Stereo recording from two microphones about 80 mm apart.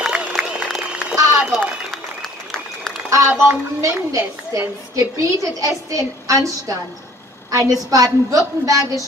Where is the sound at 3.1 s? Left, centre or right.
Right.